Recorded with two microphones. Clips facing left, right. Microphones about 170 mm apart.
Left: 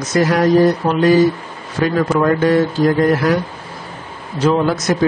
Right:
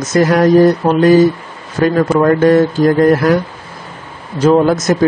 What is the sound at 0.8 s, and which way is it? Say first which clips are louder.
Speech: right 4 dB; 35° right (ahead or behind).